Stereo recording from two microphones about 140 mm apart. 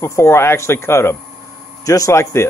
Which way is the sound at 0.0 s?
20° left (ahead or behind).